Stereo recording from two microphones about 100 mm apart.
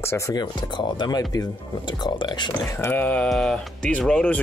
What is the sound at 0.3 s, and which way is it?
Speech, 45° left (ahead or behind).